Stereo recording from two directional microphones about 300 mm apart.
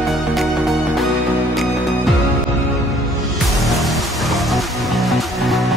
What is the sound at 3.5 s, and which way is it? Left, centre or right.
Music, centre.